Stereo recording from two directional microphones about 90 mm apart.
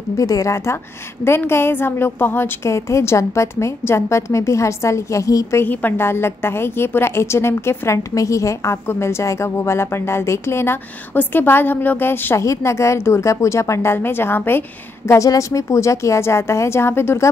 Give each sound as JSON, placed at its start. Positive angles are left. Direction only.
{"t": 0.2, "sound": "a woman's voice", "side_deg": 40}
{"t": 5.6, "sound": "a woman's voice", "side_deg": 20}
{"t": 15.0, "sound": "a woman's voice", "side_deg": 35}